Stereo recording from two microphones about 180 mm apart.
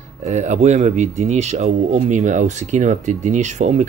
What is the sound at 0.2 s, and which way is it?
Speech, 40° right (ahead or behind).